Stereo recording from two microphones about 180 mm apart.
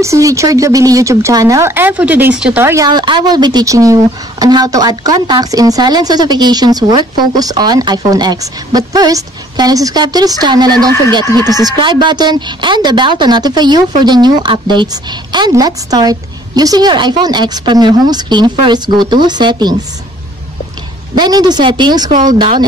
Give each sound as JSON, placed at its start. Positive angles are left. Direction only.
{"t": 0.0, "sound": "speech", "side_deg": -15}
{"t": 21.1, "sound": "speech", "side_deg": -25}
{"t": 22.1, "sound": "speech", "side_deg": -45}
{"t": 22.4, "sound": "speech", "side_deg": -25}